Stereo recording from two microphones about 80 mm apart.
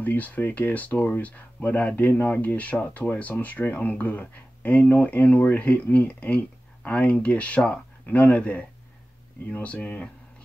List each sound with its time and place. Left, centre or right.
0.0 s speech: left